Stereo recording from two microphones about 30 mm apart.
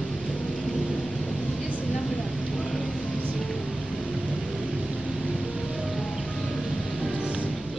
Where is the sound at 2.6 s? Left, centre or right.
Centre.